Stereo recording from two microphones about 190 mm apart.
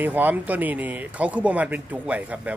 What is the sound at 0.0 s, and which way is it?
Speech, 10° right (ahead or behind).